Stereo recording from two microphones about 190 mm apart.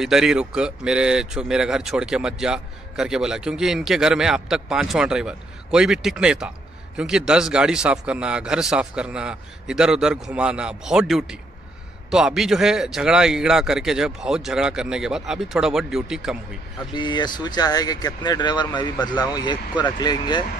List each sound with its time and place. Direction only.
0.0 s speech: 5° right (ahead or behind)
16.9 s speech: 25° left (ahead or behind)